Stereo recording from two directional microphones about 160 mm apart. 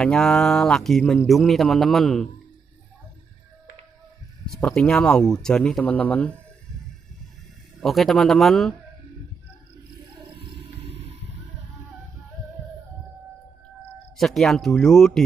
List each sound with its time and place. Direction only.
0.0 s speech: 5° left (ahead or behind)
4.6 s speech: 5° left (ahead or behind)
7.8 s speech: centre (ahead or behind)
10.4 s wild animals: 35° right (ahead or behind)
14.1 s speech: centre (ahead or behind)